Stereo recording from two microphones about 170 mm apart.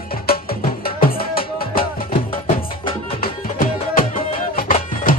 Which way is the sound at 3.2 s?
55° left (ahead or behind).